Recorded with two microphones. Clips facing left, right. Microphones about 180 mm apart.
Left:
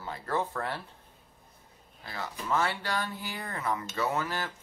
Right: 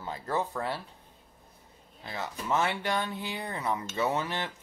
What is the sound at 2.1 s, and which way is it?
Speech, 20° right (ahead or behind).